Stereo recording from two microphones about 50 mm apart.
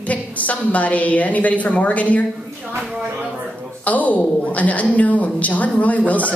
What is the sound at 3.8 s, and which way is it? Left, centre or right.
A woman's voice, left.